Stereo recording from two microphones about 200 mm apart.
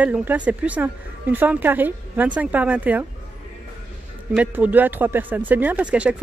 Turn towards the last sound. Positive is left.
turn(degrees=-5)  # may be behind; listen again after turning